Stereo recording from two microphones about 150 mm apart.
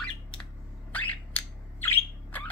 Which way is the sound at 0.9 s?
10° left (ahead or behind).